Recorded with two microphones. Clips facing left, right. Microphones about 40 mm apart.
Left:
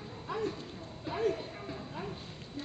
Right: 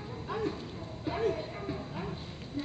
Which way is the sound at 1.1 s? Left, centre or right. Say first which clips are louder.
Right 1 dB; centre.